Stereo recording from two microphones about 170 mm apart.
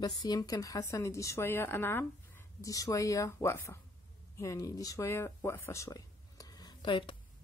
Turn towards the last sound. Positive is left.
turn(degrees=30)  # may be behind; listen again after turning